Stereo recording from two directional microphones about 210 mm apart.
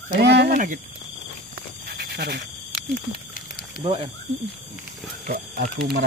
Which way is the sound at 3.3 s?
45° left (ahead or behind).